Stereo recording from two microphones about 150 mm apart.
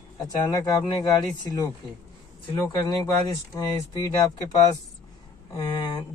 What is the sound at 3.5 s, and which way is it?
Speech, 25° left (ahead or behind).